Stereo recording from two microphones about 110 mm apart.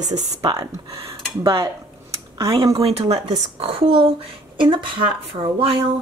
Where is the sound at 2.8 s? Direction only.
70° right (ahead or behind).